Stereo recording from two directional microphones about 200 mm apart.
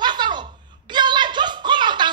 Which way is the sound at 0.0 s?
20° right (ahead or behind).